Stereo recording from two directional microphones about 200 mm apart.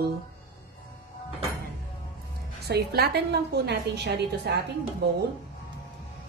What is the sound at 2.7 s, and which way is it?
A woman's voice, 50° right (ahead or behind).